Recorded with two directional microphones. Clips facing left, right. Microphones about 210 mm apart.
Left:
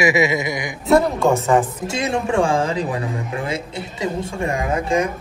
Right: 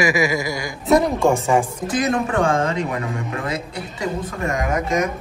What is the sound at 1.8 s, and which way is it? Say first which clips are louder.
Speech: right 1 dB; 30° left (ahead or behind).